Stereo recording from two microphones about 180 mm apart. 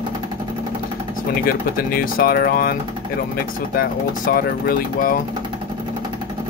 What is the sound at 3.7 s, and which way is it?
Speech, 55° left (ahead or behind).